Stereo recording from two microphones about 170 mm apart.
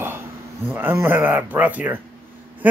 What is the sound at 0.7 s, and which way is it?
Speech, 10° right (ahead or behind).